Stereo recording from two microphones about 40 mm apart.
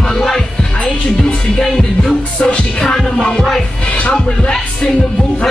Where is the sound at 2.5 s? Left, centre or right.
Left.